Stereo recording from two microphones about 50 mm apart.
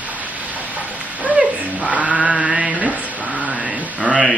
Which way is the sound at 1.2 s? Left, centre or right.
Right.